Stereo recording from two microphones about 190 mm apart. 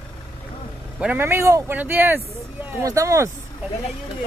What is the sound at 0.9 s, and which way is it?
Speech, 10° right (ahead or behind).